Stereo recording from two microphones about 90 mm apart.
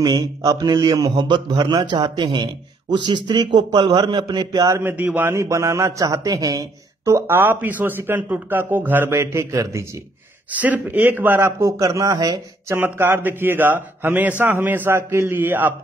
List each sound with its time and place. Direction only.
0.0 s a man's voice: 50° right (ahead or behind)
4.8 s speech: 25° right (ahead or behind)
5.4 s a man's voice: 35° right (ahead or behind)
7.2 s speech: 20° right (ahead or behind)
10.5 s speech: 15° right (ahead or behind); by 12.7 s 45° right (ahead or behind)
12.7 s speech: 25° right (ahead or behind)